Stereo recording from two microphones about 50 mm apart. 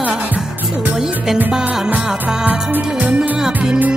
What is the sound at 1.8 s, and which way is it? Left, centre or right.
Music of bollywood, centre.